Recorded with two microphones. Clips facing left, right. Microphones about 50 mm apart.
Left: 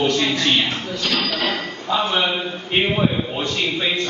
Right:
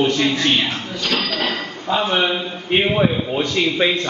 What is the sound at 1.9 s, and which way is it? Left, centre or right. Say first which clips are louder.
Speech: right 2 dB; centre.